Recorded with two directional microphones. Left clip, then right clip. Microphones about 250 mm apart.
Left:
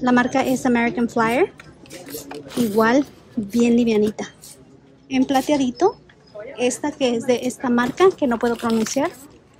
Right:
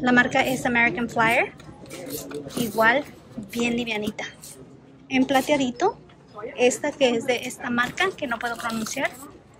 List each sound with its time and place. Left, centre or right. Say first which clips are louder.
0.0 s a woman's voice: left 1 dB; centre
2.3 s speech: left 6 dB; centre
2.8 s a woman's voice: left 1 dB; centre